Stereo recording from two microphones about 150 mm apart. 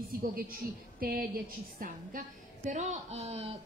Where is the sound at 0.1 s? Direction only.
85° right.